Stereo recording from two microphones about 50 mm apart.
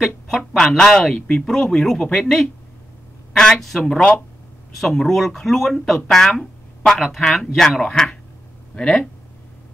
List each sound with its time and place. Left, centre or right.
0.6 s speech: centre
3.8 s speech: centre
4.7 s speech: centre